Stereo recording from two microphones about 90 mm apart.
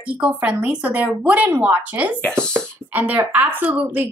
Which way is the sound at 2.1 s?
15° left (ahead or behind).